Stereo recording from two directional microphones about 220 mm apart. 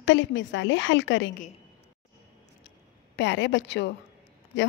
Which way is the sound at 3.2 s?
55° left (ahead or behind).